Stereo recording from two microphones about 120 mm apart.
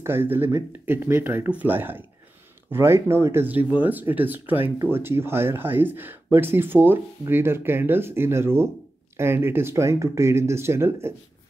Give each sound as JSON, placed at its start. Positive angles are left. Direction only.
{"t": 0.0, "sound": "speech", "side_deg": -20}